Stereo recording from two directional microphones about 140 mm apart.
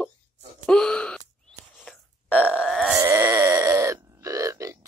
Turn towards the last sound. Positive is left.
turn(degrees=-25)  # may be behind; listen again after turning